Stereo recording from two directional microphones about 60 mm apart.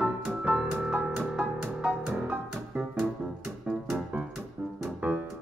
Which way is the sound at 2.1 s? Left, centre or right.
Right.